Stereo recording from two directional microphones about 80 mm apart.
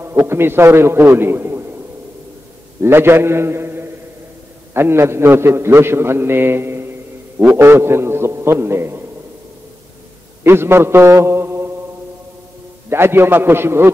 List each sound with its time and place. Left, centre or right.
0.0 s a man's voice: right
2.8 s a man's voice: right
10.4 s a man's voice: right
12.9 s a man's voice: right